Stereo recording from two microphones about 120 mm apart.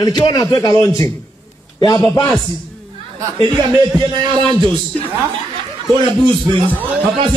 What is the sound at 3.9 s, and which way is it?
Speech, 40° right (ahead or behind).